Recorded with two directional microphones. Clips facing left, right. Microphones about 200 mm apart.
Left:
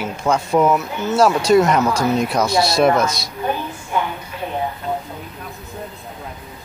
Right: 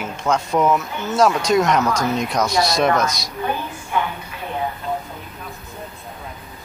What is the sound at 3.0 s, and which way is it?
Speech, 30° left (ahead or behind).